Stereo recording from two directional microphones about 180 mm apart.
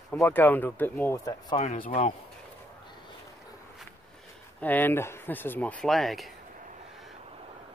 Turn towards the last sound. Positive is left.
turn(degrees=0)  # may be behind; listen again after turning